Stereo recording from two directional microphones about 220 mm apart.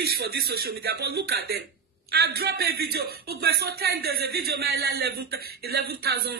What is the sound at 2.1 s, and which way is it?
Speech, 45° right (ahead or behind).